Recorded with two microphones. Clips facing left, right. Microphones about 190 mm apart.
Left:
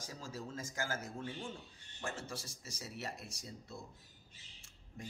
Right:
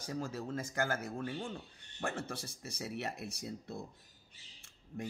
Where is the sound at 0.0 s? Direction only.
60° right (ahead or behind).